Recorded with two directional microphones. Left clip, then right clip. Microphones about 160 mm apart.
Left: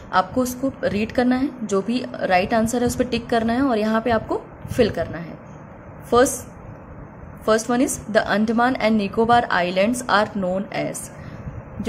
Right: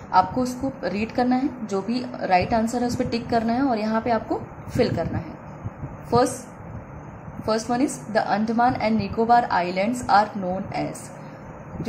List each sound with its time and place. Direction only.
0.1 s a woman's voice: 45° left (ahead or behind)
7.4 s a woman's voice: 50° left (ahead or behind)